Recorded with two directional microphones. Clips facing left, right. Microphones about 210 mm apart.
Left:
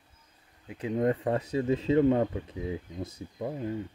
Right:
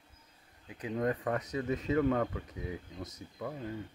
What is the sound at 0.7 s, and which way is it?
Speech, 25° left (ahead or behind).